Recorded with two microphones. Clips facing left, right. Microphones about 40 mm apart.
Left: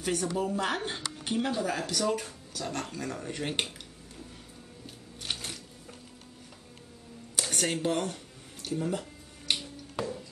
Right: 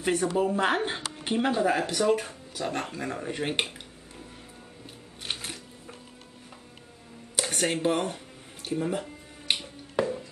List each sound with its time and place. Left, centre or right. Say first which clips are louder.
0.0 s speech: right 5 dB; right
5.2 s music: right 1 dB; centre
7.5 s speech: right 3 dB; right
8.6 s a sound: right 3 dB; right